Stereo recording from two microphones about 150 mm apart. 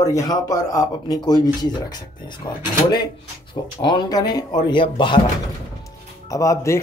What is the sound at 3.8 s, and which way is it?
Speech, 30° left (ahead or behind).